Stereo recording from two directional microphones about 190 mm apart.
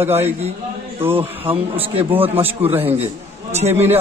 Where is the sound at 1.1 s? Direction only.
30° right (ahead or behind).